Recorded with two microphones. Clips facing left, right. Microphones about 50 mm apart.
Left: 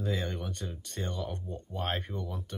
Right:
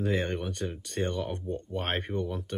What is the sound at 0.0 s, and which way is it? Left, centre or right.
Speech, right.